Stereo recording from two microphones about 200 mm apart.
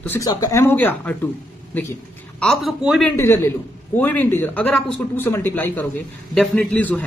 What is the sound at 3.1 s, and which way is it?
Speech, 10° left (ahead or behind).